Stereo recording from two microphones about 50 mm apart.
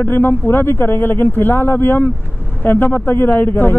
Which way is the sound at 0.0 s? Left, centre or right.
Left.